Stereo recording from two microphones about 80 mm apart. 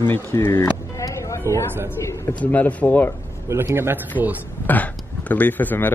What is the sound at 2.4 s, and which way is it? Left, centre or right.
Speech, centre.